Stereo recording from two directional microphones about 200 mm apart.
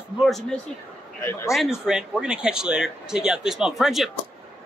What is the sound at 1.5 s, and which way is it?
Speech, centre (ahead or behind).